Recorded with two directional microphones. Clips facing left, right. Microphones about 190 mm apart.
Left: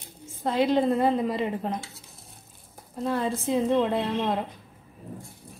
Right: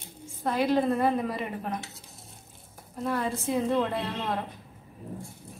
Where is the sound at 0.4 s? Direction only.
25° left (ahead or behind).